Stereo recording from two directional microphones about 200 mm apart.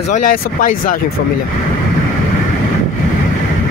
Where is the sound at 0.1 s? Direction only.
40° left (ahead or behind).